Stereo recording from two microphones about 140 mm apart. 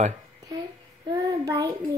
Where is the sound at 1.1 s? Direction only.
25° right (ahead or behind).